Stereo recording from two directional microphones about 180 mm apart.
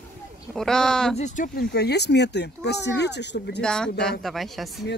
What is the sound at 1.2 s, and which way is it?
Speech, 40° left (ahead or behind).